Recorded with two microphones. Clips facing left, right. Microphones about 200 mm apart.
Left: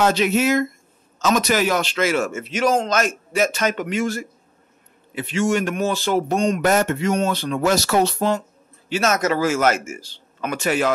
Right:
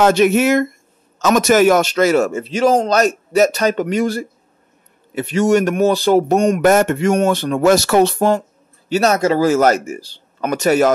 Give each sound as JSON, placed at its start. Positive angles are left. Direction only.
{"t": 0.0, "sound": "speech", "side_deg": -50}